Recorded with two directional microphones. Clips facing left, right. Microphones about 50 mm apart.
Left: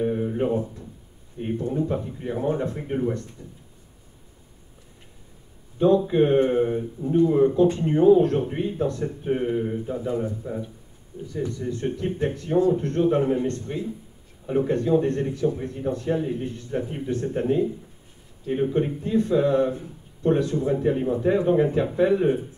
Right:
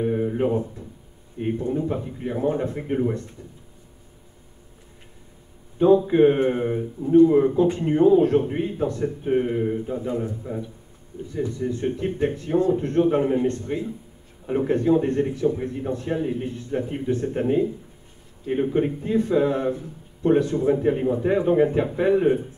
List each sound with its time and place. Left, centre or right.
0.0 s a sound: centre
1.4 s speech: centre
5.8 s speech: centre
9.0 s speech: centre